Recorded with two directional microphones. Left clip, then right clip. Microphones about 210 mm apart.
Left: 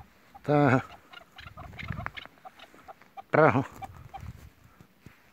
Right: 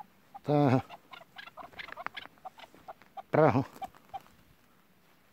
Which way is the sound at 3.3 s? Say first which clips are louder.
Left 3 dB; 5° right (ahead or behind).